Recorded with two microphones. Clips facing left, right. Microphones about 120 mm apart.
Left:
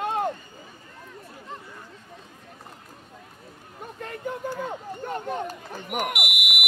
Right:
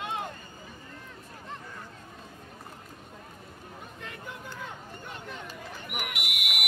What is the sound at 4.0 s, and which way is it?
Chatter, 45° left (ahead or behind).